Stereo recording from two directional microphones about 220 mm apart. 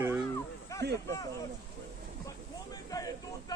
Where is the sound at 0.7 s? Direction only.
15° left (ahead or behind).